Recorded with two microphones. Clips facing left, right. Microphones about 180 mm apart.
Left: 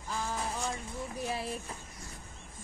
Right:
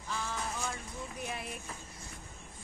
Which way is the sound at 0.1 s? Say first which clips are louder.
Left 3 dB; 40° left (ahead or behind).